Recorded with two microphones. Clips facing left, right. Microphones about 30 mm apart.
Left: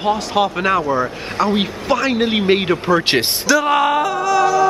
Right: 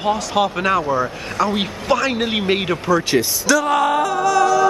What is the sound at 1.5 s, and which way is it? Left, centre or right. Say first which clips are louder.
Speech: left 1 dB; centre.